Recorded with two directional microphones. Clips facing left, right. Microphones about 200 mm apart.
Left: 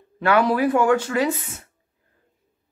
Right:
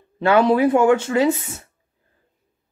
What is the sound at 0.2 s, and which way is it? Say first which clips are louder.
Speech: right 3 dB; 25° right (ahead or behind).